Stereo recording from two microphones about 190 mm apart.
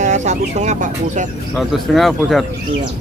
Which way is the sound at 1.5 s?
Centre (ahead or behind).